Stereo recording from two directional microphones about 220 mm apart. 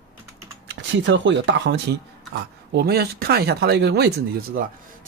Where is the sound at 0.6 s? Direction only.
55° right (ahead or behind).